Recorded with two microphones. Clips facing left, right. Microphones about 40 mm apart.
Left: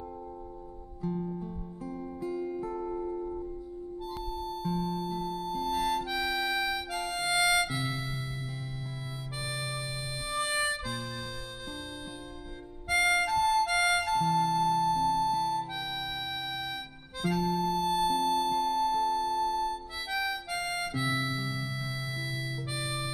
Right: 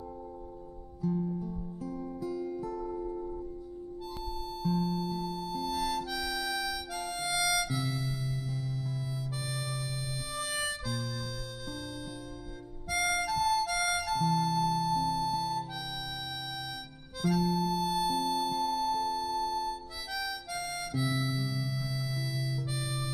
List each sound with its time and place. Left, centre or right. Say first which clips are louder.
1.0 s music: right 2 dB; left
9.5 s music: left 5 dB; left
10.3 s harmonica: left 5 dB; left
12.8 s music: left 4 dB; left
17.2 s harmonica: even; left